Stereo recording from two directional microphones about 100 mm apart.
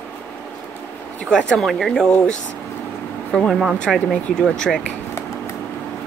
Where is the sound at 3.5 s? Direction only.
5° right (ahead or behind).